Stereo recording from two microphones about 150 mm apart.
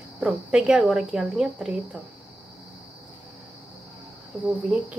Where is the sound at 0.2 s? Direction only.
5° right (ahead or behind).